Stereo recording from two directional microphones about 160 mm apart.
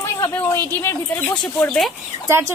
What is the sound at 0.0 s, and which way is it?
A woman's voice, 15° left (ahead or behind).